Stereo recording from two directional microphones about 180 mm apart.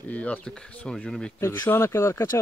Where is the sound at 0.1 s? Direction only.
5° left (ahead or behind).